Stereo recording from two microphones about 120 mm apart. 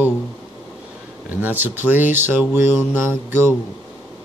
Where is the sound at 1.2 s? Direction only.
15° right (ahead or behind).